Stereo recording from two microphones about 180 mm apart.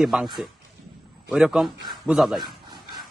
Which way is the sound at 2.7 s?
25° right (ahead or behind).